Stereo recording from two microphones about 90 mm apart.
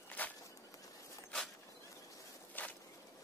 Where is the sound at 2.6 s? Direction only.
20° left (ahead or behind).